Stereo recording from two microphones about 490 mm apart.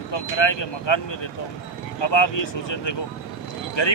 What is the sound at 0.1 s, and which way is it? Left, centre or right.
Speech, left.